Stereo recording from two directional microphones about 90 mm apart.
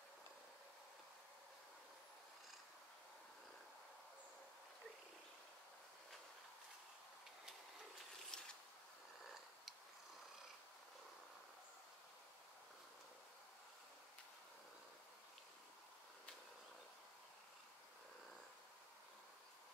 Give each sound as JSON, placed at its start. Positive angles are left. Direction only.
{"t": 8.3, "sound": "pulleys", "side_deg": 10}